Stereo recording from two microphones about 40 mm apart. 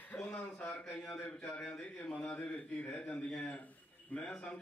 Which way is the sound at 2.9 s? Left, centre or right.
Left.